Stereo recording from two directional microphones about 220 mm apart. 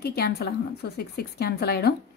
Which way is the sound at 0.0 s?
45° left (ahead or behind).